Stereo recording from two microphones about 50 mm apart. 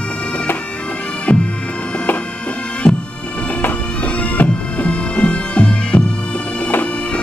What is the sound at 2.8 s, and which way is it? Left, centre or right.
Bagpipes, centre.